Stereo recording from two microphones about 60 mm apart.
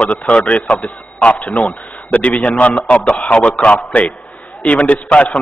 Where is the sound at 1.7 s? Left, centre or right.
Left.